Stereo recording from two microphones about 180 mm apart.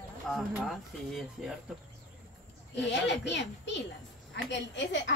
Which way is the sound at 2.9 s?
75° left (ahead or behind).